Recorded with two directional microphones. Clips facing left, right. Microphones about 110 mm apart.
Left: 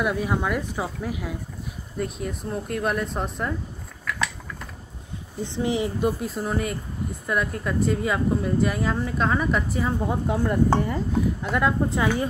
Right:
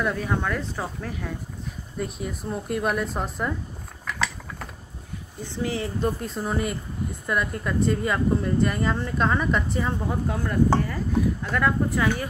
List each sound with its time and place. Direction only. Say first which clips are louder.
0.0 s a woman's voice: left 1 dB; 10° left (ahead or behind)
2.0 s a woman's voice: left 2 dB; centre (ahead or behind)
5.4 s a woman's voice: left 4 dB; 20° left (ahead or behind); by 9.9 s 5° left (ahead or behind)
10.0 s speech: left 3 dB; 20° left (ahead or behind)